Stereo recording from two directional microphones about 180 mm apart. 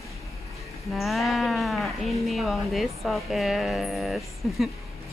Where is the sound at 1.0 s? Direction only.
Centre (ahead or behind).